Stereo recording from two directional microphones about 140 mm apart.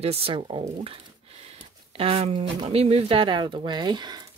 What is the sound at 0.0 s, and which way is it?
Speech, 45° right (ahead or behind).